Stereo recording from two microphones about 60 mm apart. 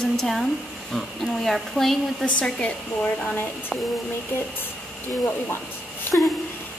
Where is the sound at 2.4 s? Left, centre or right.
Centre.